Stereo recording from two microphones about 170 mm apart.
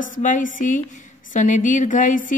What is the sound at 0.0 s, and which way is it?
Speech, 50° left (ahead or behind).